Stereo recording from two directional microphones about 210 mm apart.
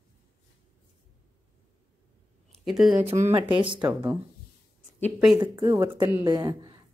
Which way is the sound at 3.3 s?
20° right (ahead or behind).